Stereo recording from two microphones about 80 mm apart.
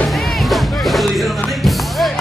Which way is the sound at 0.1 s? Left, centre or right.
Centre.